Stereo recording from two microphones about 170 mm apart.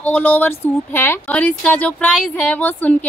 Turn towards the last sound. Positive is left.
turn(degrees=10)  # may be behind; listen again after turning